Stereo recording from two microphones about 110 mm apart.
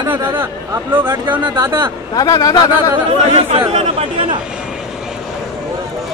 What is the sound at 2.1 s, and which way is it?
Speech, 35° left (ahead or behind).